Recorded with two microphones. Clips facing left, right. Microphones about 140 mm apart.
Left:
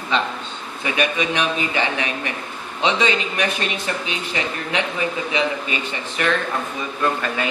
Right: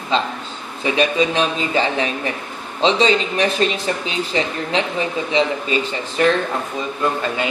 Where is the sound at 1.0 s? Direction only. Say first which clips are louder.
Right 4 dB; 30° right (ahead or behind).